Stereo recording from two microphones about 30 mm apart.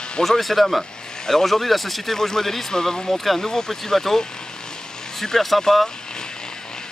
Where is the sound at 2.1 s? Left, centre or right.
Centre.